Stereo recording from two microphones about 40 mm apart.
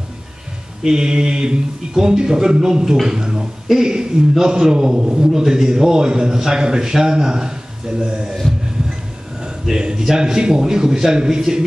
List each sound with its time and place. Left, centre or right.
0.8 s a man's voice: centre
8.4 s a sound: centre
9.7 s a man's voice: centre